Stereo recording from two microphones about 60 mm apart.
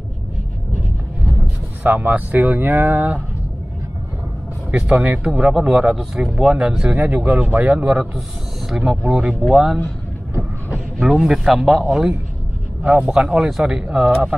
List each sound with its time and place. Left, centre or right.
1.8 s speech: right
4.6 s speech: right
7.1 s speech: right
7.7 s speech: centre
8.6 s speech: centre
9.0 s speech: centre
9.3 s speech: centre
11.0 s speech: centre